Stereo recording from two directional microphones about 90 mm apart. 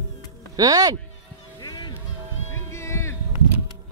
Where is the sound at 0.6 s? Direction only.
45° right (ahead or behind).